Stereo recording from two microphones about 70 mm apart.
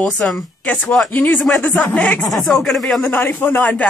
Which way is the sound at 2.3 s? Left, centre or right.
Centre.